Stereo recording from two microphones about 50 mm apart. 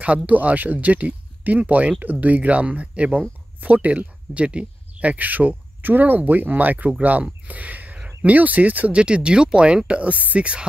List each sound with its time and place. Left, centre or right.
0.0 s speech: right